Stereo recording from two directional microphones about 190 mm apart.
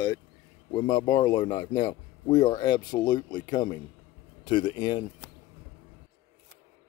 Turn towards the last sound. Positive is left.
turn(degrees=20)  # may be behind; listen again after turning